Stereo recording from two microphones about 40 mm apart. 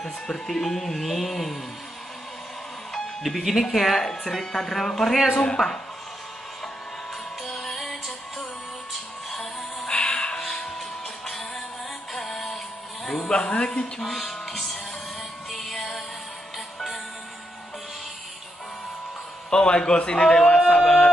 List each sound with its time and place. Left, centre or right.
0.0 s speech: centre
2.9 s speech: centre
7.4 s music: centre
9.3 s music: centre
9.8 s music: left
12.1 s music: centre
13.3 s a man's voice: left
14.0 s music: centre
16.5 s music: centre
19.5 s a man's voice: centre